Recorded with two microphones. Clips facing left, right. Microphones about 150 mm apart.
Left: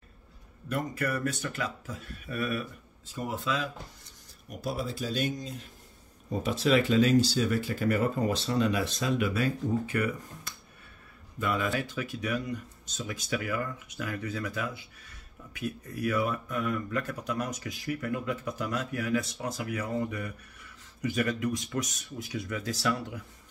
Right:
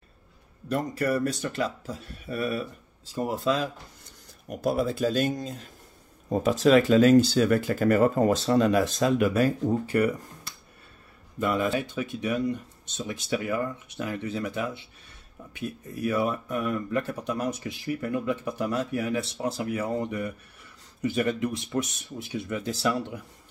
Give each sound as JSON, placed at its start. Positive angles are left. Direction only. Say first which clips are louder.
{"t": 0.7, "sound": "speech", "louder": "right 5 dB", "side_deg": -30}
{"t": 4.5, "sound": "speech", "louder": "right 8 dB", "side_deg": -55}
{"t": 11.3, "sound": "speech", "louder": "right 4 dB", "side_deg": -30}